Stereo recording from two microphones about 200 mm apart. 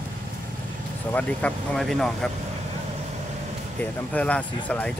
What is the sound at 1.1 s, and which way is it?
Speech, 5° left (ahead or behind).